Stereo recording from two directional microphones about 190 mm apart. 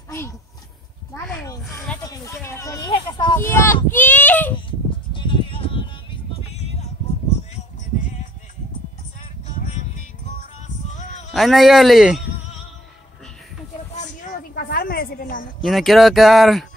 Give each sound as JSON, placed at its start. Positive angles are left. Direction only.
{"t": 1.7, "sound": "snake", "side_deg": 5}
{"t": 2.0, "sound": "children playing", "side_deg": 15}
{"t": 3.3, "sound": "a sound", "side_deg": 15}
{"t": 4.6, "sound": "music", "side_deg": 25}
{"t": 9.6, "sound": "music", "side_deg": 40}
{"t": 10.9, "sound": "a sound", "side_deg": 40}
{"t": 11.3, "sound": "speech", "side_deg": 0}
{"t": 14.5, "sound": "a sound", "side_deg": 50}
{"t": 15.6, "sound": "speech", "side_deg": 0}